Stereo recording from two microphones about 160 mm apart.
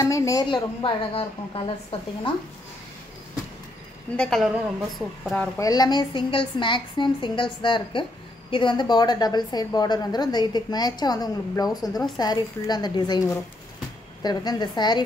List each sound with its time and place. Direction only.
0.0 s a woman's voice: 20° left (ahead or behind)
4.2 s a woman's voice: centre (ahead or behind)
5.6 s a woman's voice: 25° left (ahead or behind)